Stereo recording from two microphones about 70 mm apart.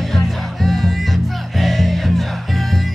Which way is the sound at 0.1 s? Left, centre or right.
Centre.